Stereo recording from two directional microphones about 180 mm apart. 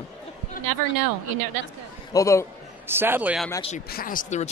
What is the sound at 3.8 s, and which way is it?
Speech, 55° left (ahead or behind).